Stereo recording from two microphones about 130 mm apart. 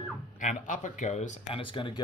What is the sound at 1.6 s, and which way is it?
Speech, 40° left (ahead or behind).